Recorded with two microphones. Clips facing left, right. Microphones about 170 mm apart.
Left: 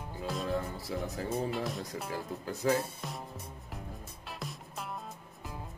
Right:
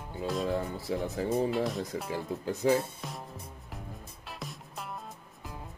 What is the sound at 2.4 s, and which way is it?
Speech, 30° right (ahead or behind).